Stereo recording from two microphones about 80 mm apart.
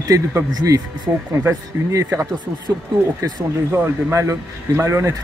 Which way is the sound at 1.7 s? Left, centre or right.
Right.